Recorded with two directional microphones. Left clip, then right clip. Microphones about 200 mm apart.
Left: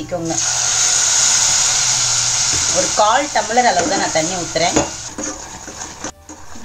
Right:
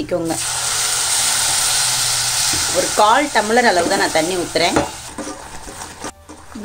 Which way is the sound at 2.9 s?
40° right (ahead or behind).